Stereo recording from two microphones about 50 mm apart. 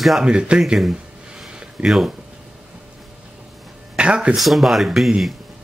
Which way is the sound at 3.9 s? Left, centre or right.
Right.